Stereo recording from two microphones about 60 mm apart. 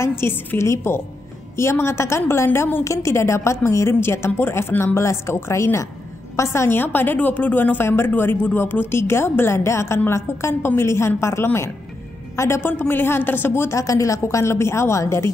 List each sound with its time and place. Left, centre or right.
0.0 s a woman's voice: left
6.8 s a woman's voice: left
12.6 s speech: left
13.7 s a woman's voice: left